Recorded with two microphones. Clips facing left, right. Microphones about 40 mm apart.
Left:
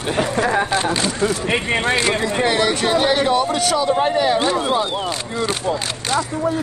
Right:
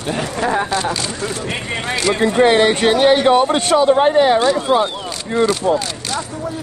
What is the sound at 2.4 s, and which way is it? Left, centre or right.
Speech, right.